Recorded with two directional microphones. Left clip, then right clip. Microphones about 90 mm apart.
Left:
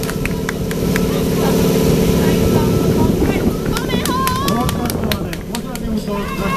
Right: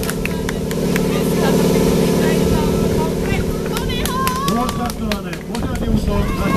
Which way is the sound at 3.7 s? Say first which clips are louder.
Left 2 dB; 25° left (ahead or behind).